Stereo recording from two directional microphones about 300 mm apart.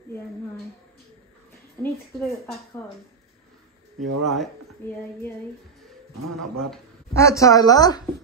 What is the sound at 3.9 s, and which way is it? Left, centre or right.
Speech, right.